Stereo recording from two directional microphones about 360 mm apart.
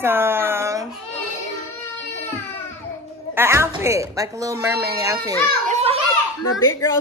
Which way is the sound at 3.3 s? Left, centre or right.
Centre.